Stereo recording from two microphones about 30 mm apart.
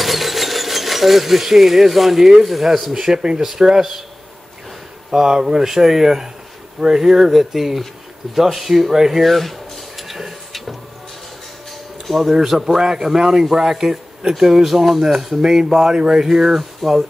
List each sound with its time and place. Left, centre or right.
0.0 s a sound: centre
2.4 s speech: centre
2.9 s speech: centre
5.1 s speech: centre
9.2 s a sound: centre
12.1 s speech: centre
15.3 s speech: centre